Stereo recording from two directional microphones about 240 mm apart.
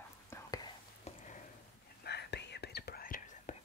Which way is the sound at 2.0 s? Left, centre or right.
Left.